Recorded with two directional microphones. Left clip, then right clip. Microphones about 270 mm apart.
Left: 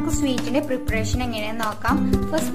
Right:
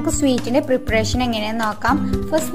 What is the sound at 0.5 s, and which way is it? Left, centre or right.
A woman's voice, centre.